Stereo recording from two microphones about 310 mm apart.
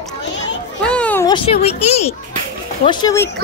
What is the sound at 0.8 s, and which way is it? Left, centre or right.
A child's voice, centre.